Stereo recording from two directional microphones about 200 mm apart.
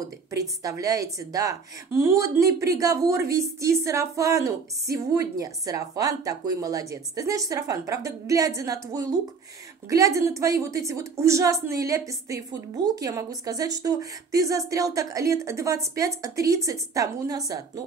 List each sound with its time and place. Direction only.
0.6 s a woman's voice: 15° right (ahead or behind)